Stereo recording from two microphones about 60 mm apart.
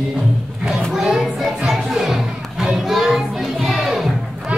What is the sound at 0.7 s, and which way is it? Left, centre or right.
Music, centre.